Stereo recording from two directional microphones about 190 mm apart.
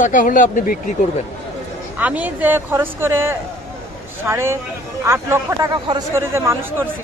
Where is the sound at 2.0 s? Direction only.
10° right (ahead or behind).